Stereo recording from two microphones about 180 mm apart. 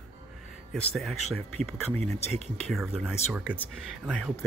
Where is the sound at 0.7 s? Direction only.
Centre (ahead or behind).